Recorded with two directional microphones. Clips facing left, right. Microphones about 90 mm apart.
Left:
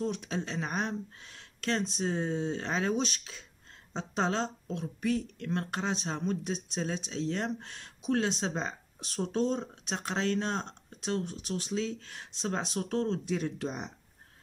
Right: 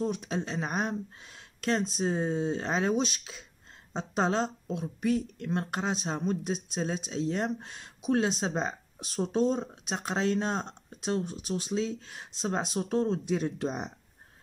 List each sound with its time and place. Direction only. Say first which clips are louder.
0.0 s speech: right 2 dB; 15° right (ahead or behind)